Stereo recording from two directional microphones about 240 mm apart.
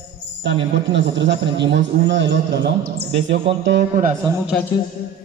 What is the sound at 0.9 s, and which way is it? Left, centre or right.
A man's voice, right.